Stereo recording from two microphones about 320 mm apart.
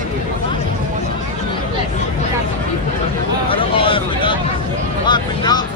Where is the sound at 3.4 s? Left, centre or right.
Centre.